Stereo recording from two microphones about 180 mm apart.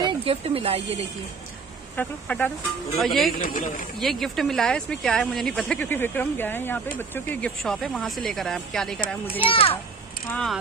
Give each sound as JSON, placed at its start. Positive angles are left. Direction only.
{"t": 0.0, "sound": "speech", "side_deg": -30}
{"t": 2.0, "sound": "speech", "side_deg": 10}
{"t": 3.3, "sound": "speech", "side_deg": 50}
{"t": 4.0, "sound": "speech", "side_deg": 0}
{"t": 9.4, "sound": "a child's voice", "side_deg": 30}
{"t": 10.3, "sound": "speech", "side_deg": 5}